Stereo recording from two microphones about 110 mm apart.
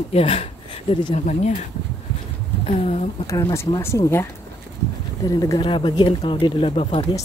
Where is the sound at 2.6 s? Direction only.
80° left.